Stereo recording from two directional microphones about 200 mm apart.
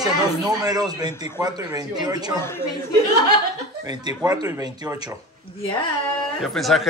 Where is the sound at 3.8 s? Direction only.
20° right (ahead or behind).